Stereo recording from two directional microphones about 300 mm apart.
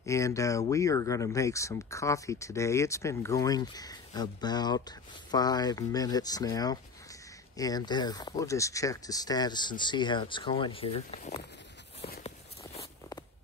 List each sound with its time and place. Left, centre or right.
0.0 s speech: centre
12.0 s walk: left